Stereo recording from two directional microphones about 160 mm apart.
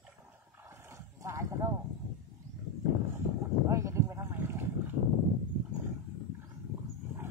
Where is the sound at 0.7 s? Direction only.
15° right (ahead or behind).